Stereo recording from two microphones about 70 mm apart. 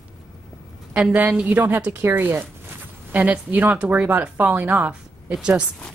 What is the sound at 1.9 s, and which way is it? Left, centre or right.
Speech, right.